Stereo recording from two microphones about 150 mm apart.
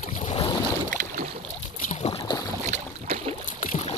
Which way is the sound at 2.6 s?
50° right (ahead or behind).